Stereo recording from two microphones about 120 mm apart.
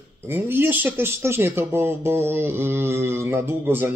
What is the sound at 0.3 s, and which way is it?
Speech, 20° right (ahead or behind).